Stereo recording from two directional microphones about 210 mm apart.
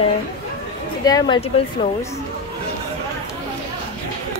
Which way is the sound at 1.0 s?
15° left (ahead or behind).